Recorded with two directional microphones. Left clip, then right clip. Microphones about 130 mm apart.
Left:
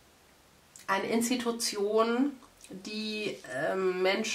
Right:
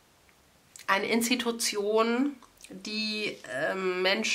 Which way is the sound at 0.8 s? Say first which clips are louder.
Right 3 dB; 20° right (ahead or behind).